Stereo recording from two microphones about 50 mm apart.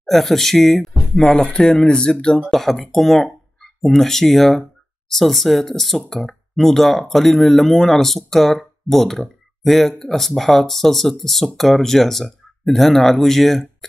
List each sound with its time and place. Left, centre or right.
0.0 s speech: centre
2.5 s speech: centre